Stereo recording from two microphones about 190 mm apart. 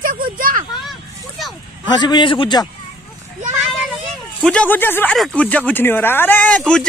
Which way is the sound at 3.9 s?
5° left (ahead or behind).